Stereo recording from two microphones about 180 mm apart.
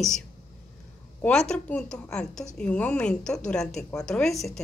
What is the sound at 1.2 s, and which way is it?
A woman's voice, 5° left (ahead or behind).